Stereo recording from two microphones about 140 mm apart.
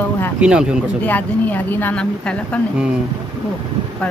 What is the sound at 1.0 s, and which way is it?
A woman's voice, 10° left (ahead or behind).